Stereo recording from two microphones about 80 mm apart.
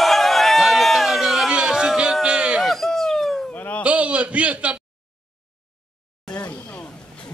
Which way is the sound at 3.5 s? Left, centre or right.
Centre.